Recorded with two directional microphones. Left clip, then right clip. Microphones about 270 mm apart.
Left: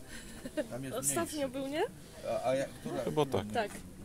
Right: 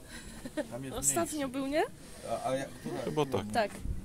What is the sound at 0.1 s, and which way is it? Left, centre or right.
Speech, centre.